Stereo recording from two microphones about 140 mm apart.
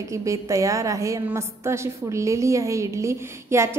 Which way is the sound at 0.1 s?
20° right (ahead or behind).